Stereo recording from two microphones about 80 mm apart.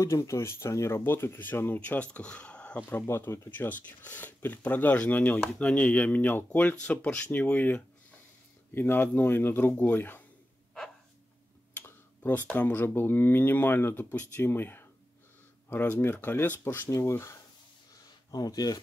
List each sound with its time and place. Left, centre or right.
0.0 s speech: left; by 2.8 s centre
3.1 s speech: left
5.4 s speech: centre
11.7 s tick-tock: left
12.5 s speech: left
18.3 s speech: left